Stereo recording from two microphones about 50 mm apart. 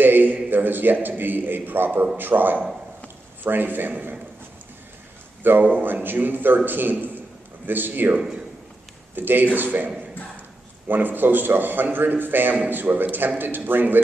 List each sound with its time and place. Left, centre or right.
0.0 s a man's voice: right
5.4 s a man's voice: right
10.9 s a man's voice: right